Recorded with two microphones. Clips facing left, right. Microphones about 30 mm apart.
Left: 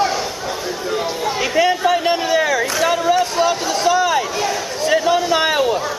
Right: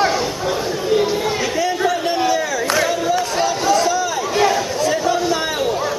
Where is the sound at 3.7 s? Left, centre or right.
Left.